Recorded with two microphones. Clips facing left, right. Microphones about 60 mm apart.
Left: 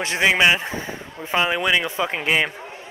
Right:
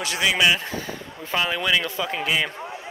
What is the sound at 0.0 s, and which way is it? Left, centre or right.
A man's voice, left.